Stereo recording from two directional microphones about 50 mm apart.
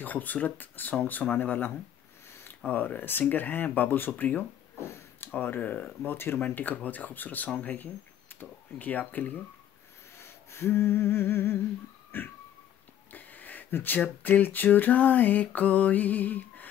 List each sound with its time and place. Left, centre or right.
0.0 s speech: left
2.7 s speech: left
6.1 s speech: left
10.1 s humming: left
12.1 s a sound: left
13.7 s speech: left